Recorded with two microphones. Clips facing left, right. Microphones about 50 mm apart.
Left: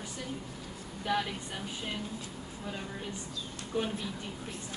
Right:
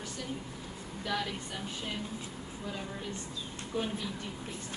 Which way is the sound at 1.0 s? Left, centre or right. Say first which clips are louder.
Left 3 dB; centre.